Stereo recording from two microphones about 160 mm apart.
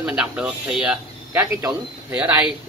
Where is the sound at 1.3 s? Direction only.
15° right (ahead or behind).